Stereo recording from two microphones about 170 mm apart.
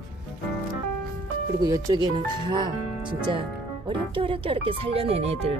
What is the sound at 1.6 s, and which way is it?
Speech, 20° right (ahead or behind).